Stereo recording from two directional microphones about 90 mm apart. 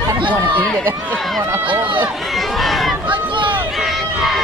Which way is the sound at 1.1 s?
5° left (ahead or behind).